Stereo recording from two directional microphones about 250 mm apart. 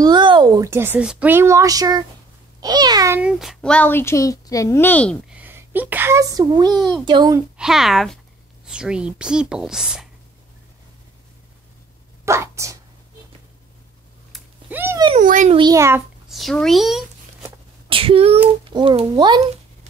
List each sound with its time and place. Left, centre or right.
0.0 s a child's voice: centre
5.4 s speech: centre
6.7 s a child's voice: centre
7.1 s speech: centre
7.5 s a child's voice: centre
12.3 s speech: centre
14.3 s a sound: centre
15.0 s speech: right
15.6 s speech: centre
16.3 s a child's voice: centre
17.8 s a child's voice: right